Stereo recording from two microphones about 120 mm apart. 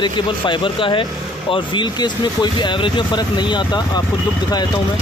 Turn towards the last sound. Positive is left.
turn(degrees=40)  # may be behind; listen again after turning